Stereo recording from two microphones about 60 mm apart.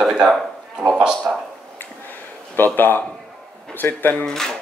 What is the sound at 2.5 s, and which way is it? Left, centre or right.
Speech, left.